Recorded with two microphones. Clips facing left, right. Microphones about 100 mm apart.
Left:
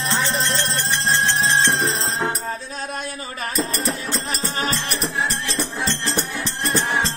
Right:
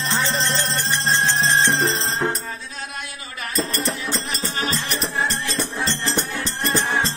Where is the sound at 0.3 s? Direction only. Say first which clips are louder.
Even; 10° left (ahead or behind).